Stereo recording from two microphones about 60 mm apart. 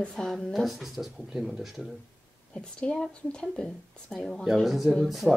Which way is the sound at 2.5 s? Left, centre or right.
Centre.